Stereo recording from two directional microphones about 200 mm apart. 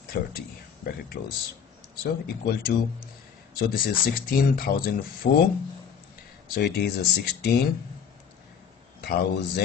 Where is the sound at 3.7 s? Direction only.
45° left (ahead or behind).